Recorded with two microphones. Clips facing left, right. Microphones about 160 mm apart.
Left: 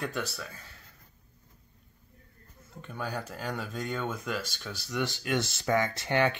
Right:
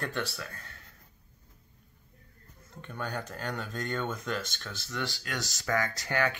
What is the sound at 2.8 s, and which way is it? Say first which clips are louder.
Speech: left 1 dB; 5° left (ahead or behind).